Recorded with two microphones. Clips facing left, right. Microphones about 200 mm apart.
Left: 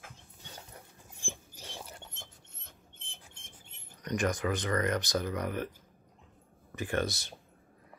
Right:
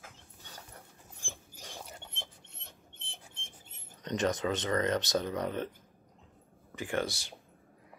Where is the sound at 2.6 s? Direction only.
75° right (ahead or behind).